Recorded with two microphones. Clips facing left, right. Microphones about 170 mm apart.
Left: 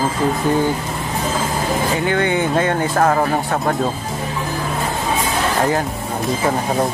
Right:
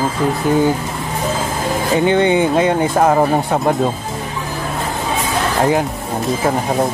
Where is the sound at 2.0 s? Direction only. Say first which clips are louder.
Right 8 dB; 20° right (ahead or behind).